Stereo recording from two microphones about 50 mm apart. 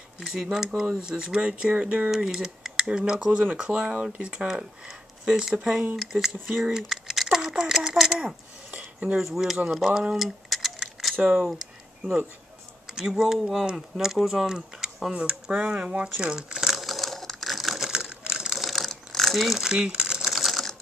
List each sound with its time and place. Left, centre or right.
0.2 s speech: centre
2.0 s speech: centre
3.3 s speech: right
4.5 s speech: centre
7.3 s a sound: centre
9.2 s speech: centre
10.1 s a sound: centre
11.2 s speech: centre
13.1 s speech: centre
16.8 s crushing: centre
18.7 s ratchet: centre
19.4 s typewriter: centre
20.3 s typewriter: centre